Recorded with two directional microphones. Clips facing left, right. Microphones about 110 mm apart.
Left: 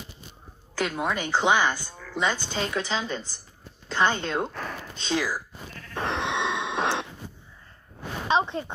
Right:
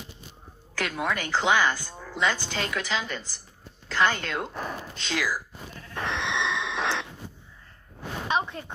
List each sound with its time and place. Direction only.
0.7 s speech: 20° left (ahead or behind)
4.5 s speech: 15° right (ahead or behind)
4.9 s speech: 20° left (ahead or behind)
5.9 s sheep: 40° left (ahead or behind)
6.5 s a sound: 20° left (ahead or behind)
8.3 s a sound: 25° left (ahead or behind)